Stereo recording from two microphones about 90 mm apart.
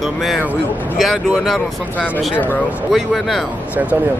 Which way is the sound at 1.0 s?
Centre (ahead or behind).